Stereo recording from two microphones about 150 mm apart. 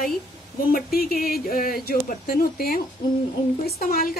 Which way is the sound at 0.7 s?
85° left.